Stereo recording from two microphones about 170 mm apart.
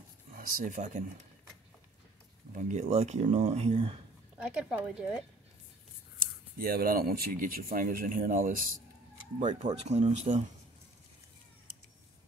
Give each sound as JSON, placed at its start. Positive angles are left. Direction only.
{"t": 0.3, "sound": "speech", "side_deg": -55}
{"t": 2.5, "sound": "speech", "side_deg": -45}
{"t": 4.4, "sound": "a woman's voice", "side_deg": -5}
{"t": 6.6, "sound": "speech", "side_deg": -60}
{"t": 9.6, "sound": "speech", "side_deg": -40}